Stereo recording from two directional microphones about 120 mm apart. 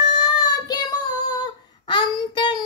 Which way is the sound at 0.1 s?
35° left (ahead or behind).